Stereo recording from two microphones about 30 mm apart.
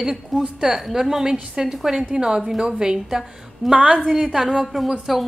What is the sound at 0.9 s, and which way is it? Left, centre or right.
A woman's voice, centre.